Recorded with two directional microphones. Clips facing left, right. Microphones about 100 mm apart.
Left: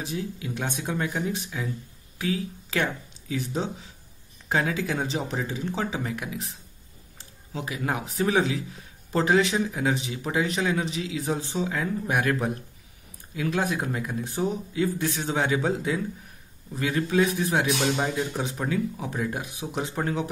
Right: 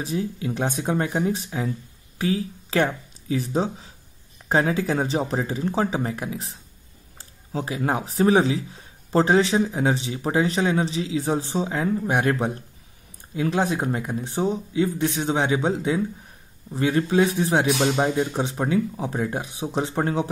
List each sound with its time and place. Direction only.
0.0 s a man's voice: 35° right (ahead or behind)